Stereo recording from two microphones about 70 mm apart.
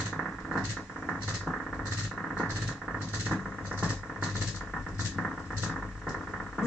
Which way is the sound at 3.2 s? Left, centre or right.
Centre.